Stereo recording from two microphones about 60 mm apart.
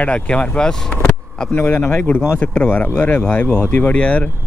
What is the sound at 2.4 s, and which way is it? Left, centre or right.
Speech, centre.